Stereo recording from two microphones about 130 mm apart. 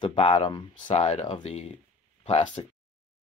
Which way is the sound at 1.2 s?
35° left (ahead or behind).